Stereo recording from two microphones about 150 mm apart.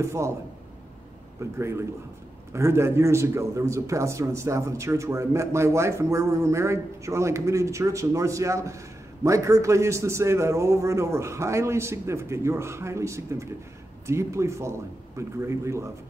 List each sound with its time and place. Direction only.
0.0 s a man's voice: 20° right (ahead or behind)
1.6 s a man's voice: 20° right (ahead or behind)